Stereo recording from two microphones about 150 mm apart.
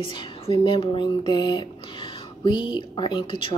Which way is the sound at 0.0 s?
35° left (ahead or behind).